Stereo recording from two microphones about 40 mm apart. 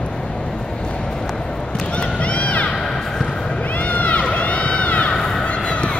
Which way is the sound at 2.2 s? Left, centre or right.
Left.